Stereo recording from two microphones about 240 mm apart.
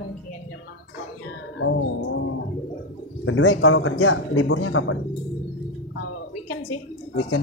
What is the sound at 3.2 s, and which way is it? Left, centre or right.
A man's voice, left.